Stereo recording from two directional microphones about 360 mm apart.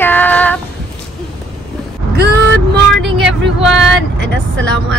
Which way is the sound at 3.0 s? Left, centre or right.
Centre.